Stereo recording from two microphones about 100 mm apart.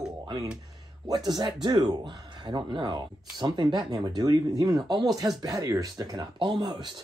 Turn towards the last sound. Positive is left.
turn(degrees=-50)  # may be behind; listen again after turning